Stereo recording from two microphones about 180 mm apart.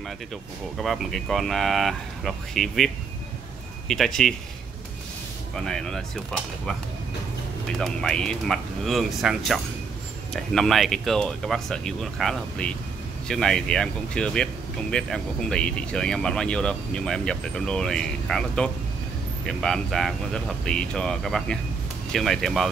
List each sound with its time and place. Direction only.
0.7 s speech: centre (ahead or behind)
5.5 s speech: centre (ahead or behind)
7.8 s speech: 5° left (ahead or behind)